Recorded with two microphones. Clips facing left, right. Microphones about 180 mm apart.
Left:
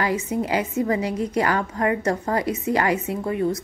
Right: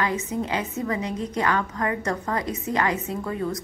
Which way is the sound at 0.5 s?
30° left (ahead or behind).